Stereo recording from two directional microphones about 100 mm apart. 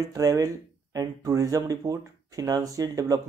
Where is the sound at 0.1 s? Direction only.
35° right (ahead or behind).